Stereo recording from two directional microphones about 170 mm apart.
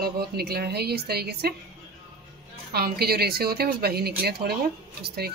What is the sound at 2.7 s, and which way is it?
A woman's voice, 65° right (ahead or behind).